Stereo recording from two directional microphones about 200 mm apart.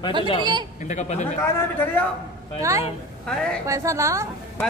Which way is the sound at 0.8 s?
35° left (ahead or behind).